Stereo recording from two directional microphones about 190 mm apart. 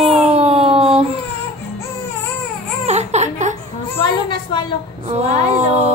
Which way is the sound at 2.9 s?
35° right (ahead or behind).